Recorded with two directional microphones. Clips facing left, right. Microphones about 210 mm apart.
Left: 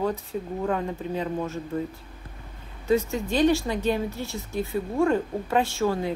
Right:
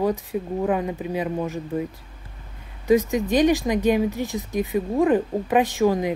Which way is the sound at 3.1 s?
15° right (ahead or behind).